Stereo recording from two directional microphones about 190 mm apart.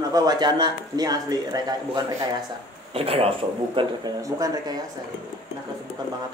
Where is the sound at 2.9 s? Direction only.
30° right (ahead or behind).